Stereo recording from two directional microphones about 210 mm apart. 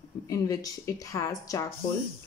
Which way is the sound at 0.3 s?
15° left (ahead or behind).